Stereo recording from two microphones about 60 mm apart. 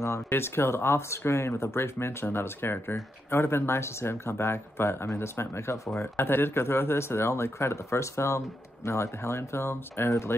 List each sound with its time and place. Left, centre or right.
0.3 s speech: left
5.9 s speech: left